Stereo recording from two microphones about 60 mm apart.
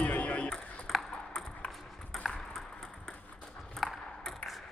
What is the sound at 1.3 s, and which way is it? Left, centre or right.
Ping, centre.